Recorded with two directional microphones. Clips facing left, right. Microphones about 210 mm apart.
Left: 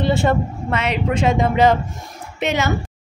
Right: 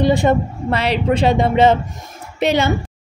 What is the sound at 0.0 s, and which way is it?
Speech, 15° right (ahead or behind).